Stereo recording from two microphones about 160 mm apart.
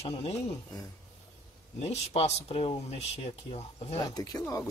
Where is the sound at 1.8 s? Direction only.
40° left (ahead or behind).